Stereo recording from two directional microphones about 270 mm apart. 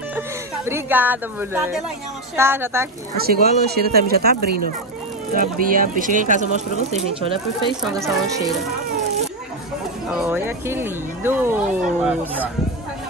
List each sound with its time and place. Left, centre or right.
0.7 s speech: centre
3.3 s speech: right; by 8.5 s centre
10.2 s speech: centre